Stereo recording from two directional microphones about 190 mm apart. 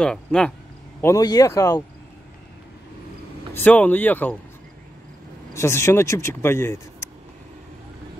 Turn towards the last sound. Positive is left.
turn(degrees=15)  # may be behind; listen again after turning